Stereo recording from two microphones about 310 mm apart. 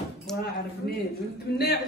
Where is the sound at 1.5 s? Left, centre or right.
Left.